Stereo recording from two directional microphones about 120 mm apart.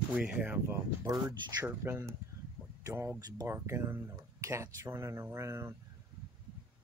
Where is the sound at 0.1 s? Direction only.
10° right (ahead or behind).